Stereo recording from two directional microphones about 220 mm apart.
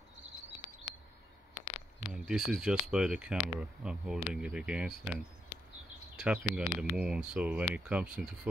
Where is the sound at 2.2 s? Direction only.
Centre (ahead or behind).